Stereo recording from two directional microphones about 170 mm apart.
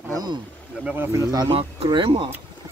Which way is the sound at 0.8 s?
10° right (ahead or behind).